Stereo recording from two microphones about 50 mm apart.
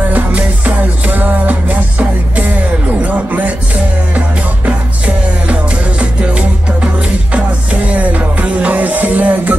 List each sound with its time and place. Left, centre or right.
0.1 s music: right
3.0 s a sound: right
4.6 s music: right